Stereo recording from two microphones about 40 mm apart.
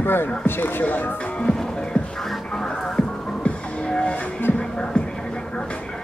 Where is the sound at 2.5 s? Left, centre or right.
Centre.